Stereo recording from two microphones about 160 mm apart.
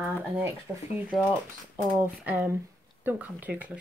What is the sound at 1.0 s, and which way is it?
A woman's voice, 10° right (ahead or behind).